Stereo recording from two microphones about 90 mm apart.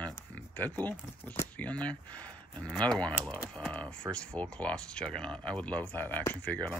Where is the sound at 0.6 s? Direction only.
20° left (ahead or behind).